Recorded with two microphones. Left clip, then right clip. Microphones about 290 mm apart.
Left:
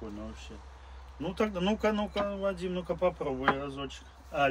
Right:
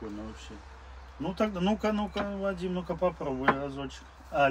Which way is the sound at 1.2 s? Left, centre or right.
Centre.